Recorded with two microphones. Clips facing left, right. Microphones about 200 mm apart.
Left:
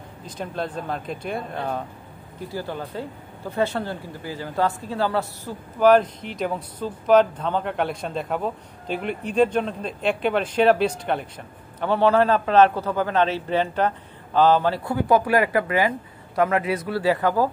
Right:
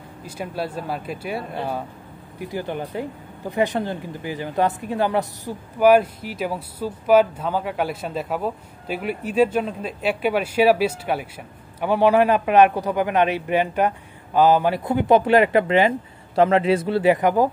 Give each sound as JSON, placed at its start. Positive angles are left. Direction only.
{"t": 0.2, "sound": "speech", "side_deg": -10}
{"t": 2.4, "sound": "speech", "side_deg": -20}